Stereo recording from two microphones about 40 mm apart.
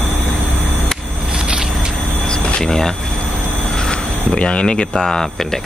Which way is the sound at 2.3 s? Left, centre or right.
Left.